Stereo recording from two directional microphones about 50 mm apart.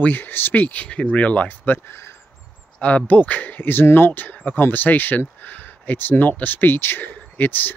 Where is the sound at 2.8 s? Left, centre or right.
Left.